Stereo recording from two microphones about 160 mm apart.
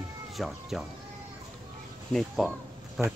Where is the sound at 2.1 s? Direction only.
Centre (ahead or behind).